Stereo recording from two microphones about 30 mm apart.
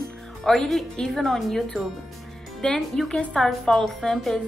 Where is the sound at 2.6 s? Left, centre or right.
Left.